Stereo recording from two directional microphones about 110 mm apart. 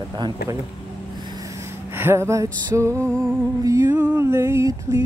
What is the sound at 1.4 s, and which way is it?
Music, 20° right (ahead or behind).